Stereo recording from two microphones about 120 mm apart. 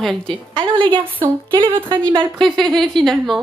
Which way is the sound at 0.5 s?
45° right (ahead or behind).